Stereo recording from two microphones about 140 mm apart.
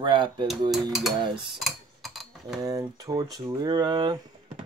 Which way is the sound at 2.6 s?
25° right (ahead or behind).